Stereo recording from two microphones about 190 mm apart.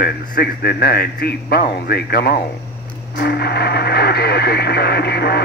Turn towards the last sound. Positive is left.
turn(degrees=55)  # may be behind; listen again after turning